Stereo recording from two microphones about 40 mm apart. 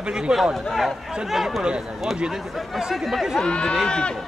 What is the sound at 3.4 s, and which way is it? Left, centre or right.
Speech, left.